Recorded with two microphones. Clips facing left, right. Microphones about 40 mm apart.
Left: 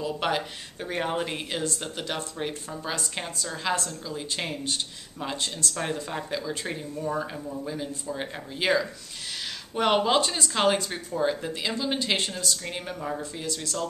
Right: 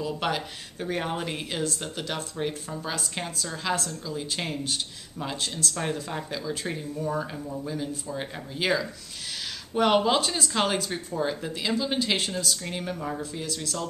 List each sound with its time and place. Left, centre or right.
0.0 s speech: centre